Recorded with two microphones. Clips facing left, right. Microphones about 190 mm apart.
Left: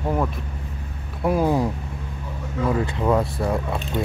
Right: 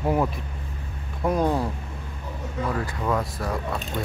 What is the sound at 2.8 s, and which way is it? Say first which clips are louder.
Speech: left 6 dB; 25° left (ahead or behind).